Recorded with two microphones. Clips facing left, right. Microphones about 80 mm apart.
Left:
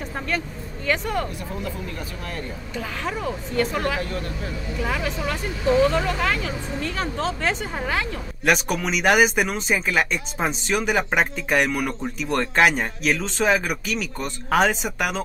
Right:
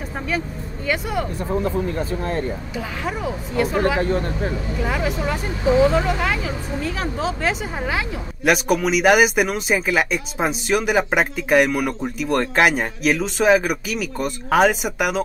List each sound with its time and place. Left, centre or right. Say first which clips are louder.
0.8 s speech: right 1 dB; centre
1.5 s speech: right 9 dB; right
3.1 s speech: right 1 dB; centre
4.0 s speech: right 8 dB; right
4.8 s speech: right 3 dB; centre